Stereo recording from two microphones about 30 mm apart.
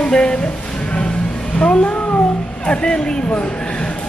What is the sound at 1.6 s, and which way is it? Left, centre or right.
Speech, left.